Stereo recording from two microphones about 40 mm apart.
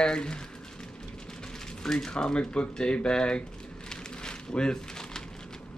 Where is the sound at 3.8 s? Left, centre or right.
Centre.